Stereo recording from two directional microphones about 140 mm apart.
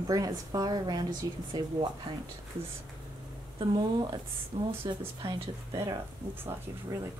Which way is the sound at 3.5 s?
30° right (ahead or behind).